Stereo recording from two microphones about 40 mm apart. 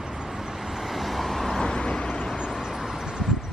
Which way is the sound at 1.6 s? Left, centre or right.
Centre.